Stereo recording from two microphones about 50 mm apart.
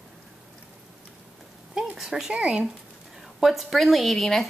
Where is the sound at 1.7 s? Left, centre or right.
Centre.